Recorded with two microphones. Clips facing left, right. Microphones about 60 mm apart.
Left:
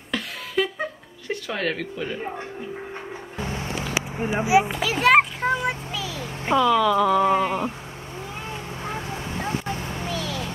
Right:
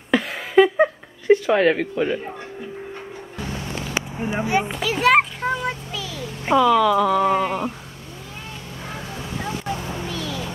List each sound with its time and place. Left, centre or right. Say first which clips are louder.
0.1 s a sound: right 9 dB; right
3.3 s vehicle: even; left
3.9 s children playing: even; centre
6.4 s speech: right 3 dB; centre
8.8 s vehicle: left 1 dB; centre
10.0 s a sound: even; centre